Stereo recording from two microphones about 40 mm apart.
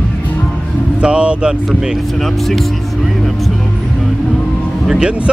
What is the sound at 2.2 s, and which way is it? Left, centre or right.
Speech, centre.